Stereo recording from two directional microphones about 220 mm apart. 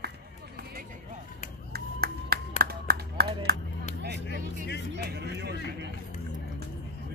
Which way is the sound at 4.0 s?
50° right (ahead or behind).